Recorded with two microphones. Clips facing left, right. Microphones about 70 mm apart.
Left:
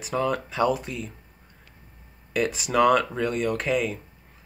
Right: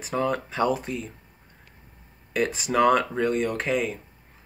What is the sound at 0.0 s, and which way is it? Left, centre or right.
Speech, right.